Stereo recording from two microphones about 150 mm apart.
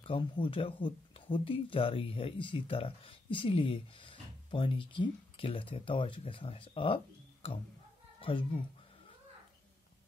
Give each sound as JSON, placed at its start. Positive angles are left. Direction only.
{"t": 0.0, "sound": "a child's voice", "side_deg": 35}